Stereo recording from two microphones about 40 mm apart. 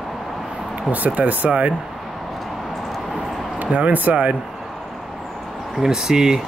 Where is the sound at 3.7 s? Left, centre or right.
Right.